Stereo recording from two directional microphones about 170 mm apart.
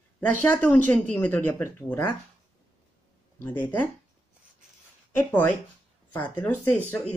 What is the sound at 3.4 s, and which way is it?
Speech, 10° left (ahead or behind).